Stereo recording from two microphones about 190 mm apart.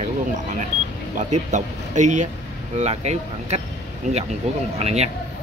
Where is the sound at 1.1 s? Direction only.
40° right (ahead or behind).